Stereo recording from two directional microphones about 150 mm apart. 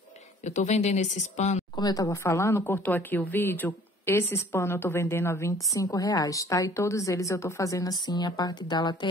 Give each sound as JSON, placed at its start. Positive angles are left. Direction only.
{"t": 0.5, "sound": "a woman's voice", "side_deg": 50}
{"t": 1.8, "sound": "speech", "side_deg": 25}